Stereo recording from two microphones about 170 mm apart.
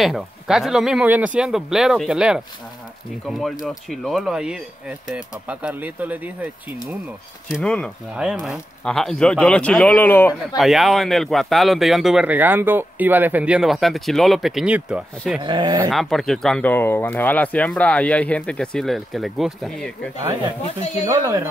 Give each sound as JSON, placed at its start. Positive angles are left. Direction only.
{"t": 0.0, "sound": "speech", "side_deg": 0}
{"t": 7.5, "sound": "speech", "side_deg": 5}
{"t": 10.6, "sound": "speech", "side_deg": 0}
{"t": 15.4, "sound": "speech", "side_deg": -25}
{"t": 15.9, "sound": "speech", "side_deg": 0}